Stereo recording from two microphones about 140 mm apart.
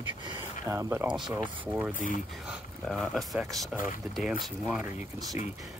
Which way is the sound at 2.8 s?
Centre (ahead or behind).